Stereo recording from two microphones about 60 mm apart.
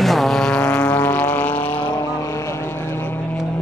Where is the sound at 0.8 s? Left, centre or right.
Left.